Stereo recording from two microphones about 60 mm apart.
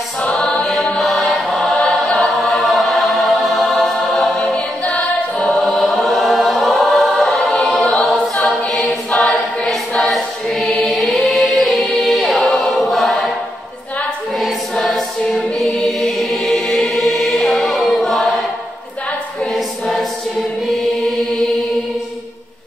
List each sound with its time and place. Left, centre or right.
0.6 s chant: centre
2.1 s choir: centre
4.8 s a capella: left
6.0 s choir: centre
10.8 s music: centre
14.4 s choir: centre
19.5 s choir: centre